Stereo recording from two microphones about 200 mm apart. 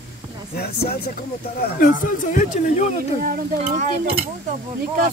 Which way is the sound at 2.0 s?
40° left (ahead or behind).